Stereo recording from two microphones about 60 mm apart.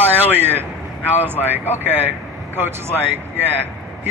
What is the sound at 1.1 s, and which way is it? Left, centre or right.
A man's voice, right.